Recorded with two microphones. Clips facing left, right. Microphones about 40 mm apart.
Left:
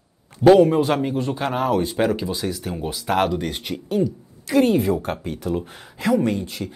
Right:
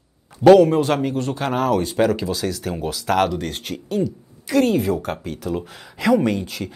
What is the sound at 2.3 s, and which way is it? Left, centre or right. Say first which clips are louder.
Speech: right 2 dB; right.